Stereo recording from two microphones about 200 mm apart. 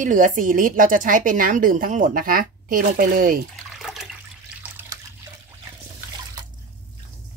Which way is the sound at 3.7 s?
Centre (ahead or behind).